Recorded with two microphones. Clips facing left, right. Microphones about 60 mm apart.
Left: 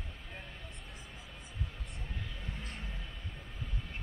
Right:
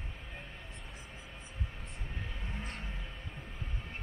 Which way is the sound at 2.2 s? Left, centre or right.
Right.